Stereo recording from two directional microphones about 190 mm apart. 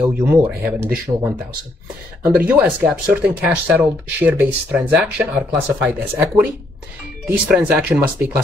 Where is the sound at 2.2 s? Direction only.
10° right (ahead or behind).